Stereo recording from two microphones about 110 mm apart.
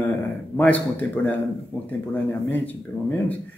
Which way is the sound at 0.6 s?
15° left (ahead or behind).